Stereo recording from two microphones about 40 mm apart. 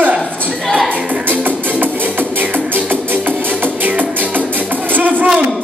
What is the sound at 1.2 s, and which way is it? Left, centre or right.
Music, right.